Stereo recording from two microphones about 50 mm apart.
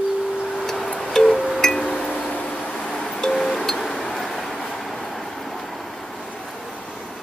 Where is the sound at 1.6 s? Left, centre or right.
Centre.